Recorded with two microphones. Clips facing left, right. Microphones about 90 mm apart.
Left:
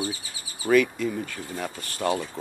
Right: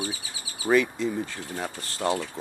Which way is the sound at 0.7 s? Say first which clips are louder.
Left 2 dB; 25° right (ahead or behind).